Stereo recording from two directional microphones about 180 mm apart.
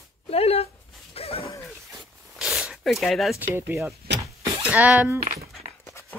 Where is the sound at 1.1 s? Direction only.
35° left (ahead or behind).